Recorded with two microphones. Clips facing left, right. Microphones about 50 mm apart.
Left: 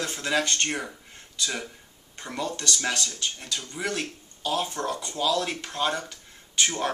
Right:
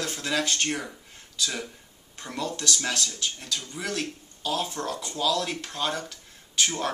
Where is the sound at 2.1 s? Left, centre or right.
Centre.